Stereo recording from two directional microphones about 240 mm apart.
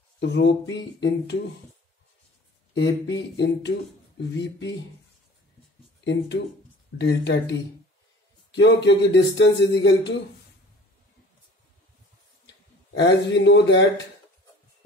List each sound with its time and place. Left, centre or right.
0.2 s speech: left
2.8 s speech: left
6.0 s speech: left
8.5 s speech: left
12.4 s a man's voice: left